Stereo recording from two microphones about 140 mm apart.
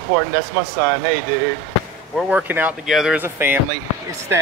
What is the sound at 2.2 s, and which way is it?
Speech, 10° right (ahead or behind).